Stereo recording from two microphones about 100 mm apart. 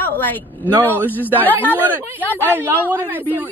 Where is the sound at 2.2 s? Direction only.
20° left (ahead or behind).